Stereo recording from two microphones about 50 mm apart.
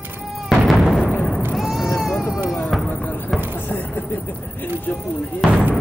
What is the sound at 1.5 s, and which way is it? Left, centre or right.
Goat, centre.